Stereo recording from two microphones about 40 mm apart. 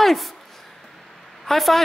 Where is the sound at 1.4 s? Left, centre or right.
Centre.